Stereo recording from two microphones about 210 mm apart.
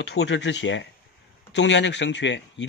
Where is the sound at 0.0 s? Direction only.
55° left (ahead or behind).